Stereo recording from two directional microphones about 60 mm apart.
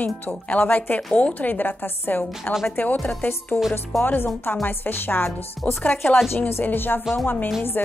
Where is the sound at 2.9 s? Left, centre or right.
Left.